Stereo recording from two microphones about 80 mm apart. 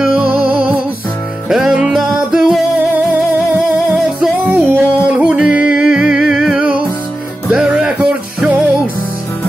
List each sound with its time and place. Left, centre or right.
0.0 s music: centre
1.5 s music: centre
4.5 s music: centre